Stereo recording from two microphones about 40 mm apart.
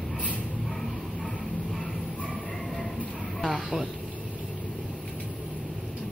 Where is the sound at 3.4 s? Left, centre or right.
Centre.